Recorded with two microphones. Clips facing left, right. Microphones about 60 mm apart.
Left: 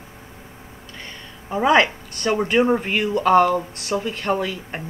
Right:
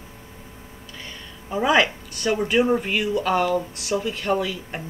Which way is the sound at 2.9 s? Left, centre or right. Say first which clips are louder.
Left 5 dB; left.